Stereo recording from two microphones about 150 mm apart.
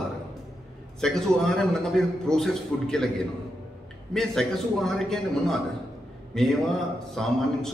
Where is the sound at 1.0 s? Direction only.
5° left (ahead or behind).